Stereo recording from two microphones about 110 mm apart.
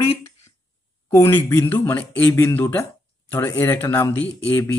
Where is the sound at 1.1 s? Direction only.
20° left (ahead or behind).